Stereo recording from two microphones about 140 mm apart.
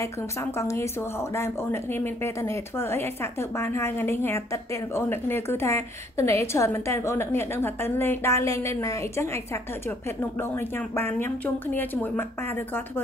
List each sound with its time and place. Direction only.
0.0 s a woman's voice: 20° left (ahead or behind)
10.5 s speech: 15° left (ahead or behind)